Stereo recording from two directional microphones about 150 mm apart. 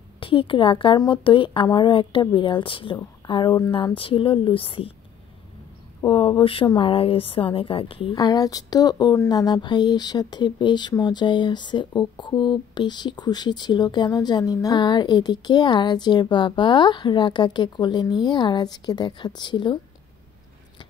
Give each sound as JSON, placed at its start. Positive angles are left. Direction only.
{"t": 0.2, "sound": "a woman's voice", "side_deg": 35}
{"t": 6.0, "sound": "a woman's voice", "side_deg": 35}
{"t": 8.2, "sound": "speech", "side_deg": 25}